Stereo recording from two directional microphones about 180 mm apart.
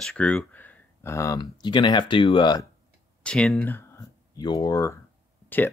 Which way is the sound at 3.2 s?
5° left (ahead or behind).